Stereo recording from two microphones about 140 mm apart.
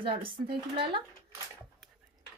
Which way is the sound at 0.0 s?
40° right (ahead or behind).